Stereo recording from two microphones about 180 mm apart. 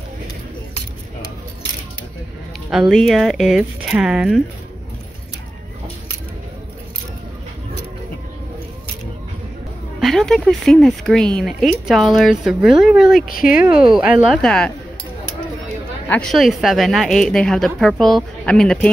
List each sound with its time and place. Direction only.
2.7 s speech: centre (ahead or behind)
9.9 s speech: centre (ahead or behind)
16.1 s speech: 5° left (ahead or behind)